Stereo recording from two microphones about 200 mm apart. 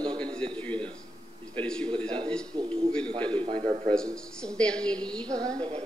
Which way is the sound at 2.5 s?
25° right (ahead or behind).